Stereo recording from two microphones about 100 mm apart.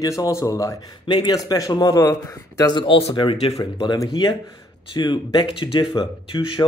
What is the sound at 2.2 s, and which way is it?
Speech, 30° left (ahead or behind).